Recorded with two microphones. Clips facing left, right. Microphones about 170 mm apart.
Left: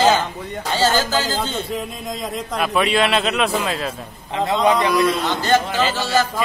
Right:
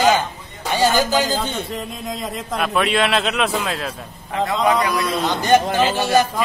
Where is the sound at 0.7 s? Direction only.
15° right (ahead or behind).